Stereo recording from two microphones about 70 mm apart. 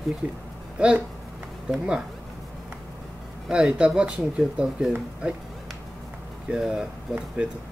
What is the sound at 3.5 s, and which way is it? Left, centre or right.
Speech, centre.